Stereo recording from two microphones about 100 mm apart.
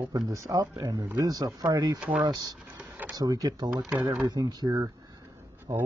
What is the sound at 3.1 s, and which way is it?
A man's voice, 40° right (ahead or behind).